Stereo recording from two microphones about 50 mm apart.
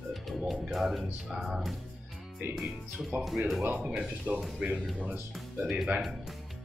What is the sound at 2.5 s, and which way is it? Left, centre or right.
Speech, centre.